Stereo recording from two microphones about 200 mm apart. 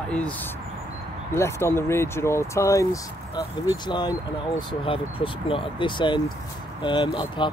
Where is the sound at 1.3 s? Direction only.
10° left (ahead or behind).